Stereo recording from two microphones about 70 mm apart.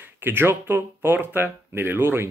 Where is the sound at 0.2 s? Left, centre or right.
Right.